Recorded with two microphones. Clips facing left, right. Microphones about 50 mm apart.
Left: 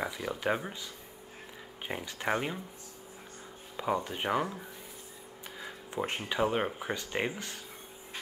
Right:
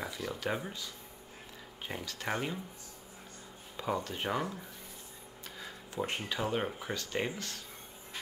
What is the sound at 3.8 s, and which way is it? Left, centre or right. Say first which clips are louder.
Speech: left 3 dB; centre.